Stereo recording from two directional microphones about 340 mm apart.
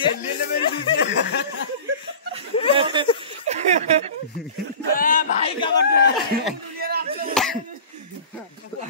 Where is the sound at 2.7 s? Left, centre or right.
Centre.